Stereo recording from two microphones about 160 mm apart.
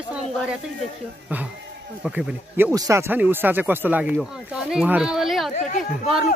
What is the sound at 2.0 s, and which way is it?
Speech, 5° right (ahead or behind).